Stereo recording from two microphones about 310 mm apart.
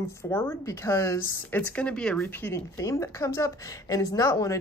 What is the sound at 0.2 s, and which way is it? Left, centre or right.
Speech, centre.